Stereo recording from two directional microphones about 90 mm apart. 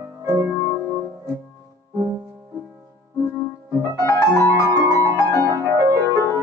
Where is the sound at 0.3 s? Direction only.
40° right (ahead or behind).